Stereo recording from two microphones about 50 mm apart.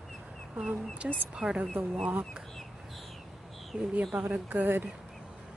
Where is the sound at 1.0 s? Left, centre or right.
Right.